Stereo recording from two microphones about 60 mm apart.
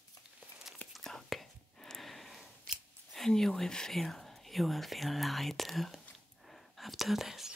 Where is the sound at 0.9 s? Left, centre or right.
Centre.